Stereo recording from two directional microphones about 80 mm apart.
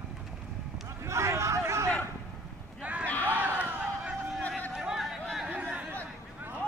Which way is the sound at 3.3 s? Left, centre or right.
Right.